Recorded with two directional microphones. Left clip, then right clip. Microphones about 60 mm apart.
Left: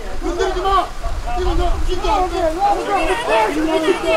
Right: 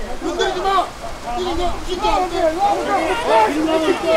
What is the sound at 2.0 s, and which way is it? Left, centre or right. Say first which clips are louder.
Speech: even; centre.